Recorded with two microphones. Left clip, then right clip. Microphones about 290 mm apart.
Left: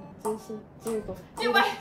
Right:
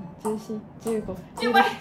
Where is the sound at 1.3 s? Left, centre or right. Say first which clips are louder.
Right 3 dB; centre.